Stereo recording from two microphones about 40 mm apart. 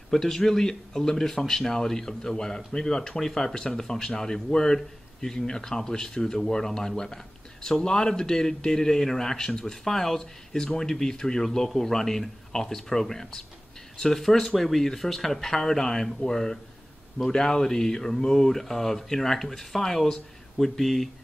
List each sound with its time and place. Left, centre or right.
0.1 s speech: centre